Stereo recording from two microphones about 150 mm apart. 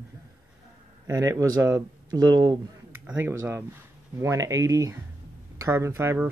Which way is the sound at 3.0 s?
10° right (ahead or behind).